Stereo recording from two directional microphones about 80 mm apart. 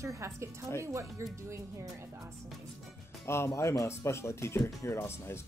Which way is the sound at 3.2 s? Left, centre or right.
Left.